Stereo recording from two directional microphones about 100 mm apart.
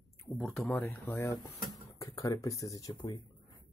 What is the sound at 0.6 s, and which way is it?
Speech, 15° left (ahead or behind).